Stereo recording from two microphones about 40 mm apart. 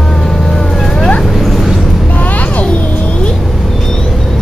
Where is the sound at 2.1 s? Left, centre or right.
Left.